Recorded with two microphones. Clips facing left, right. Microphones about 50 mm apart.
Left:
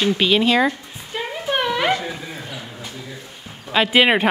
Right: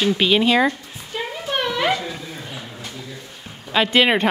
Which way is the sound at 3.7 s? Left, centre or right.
Centre.